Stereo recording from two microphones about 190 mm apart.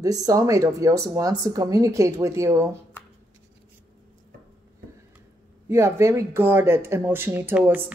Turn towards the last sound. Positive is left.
turn(degrees=-10)  # may be behind; listen again after turning